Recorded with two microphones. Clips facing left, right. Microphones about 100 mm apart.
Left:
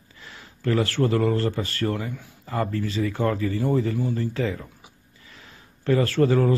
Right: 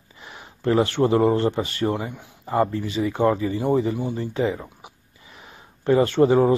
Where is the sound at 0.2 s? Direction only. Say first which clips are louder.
Right 3 dB; 20° right (ahead or behind).